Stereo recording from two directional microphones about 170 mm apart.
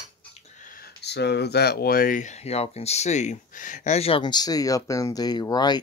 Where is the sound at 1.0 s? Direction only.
80° left.